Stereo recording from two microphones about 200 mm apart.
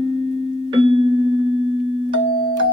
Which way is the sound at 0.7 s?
25° right (ahead or behind).